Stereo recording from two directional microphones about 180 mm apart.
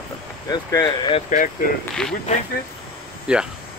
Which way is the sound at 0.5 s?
20° left (ahead or behind).